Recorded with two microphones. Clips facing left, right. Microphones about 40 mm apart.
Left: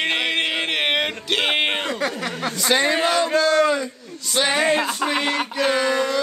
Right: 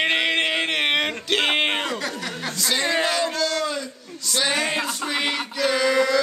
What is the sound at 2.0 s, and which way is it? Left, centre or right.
Speech, left.